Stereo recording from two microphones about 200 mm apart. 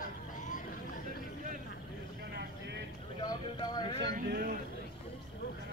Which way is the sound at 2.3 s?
55° right (ahead or behind).